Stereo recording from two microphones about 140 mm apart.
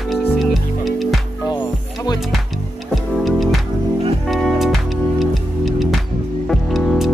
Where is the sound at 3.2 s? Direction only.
Centre (ahead or behind).